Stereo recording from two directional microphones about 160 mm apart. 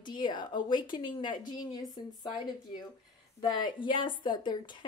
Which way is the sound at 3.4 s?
30° left (ahead or behind).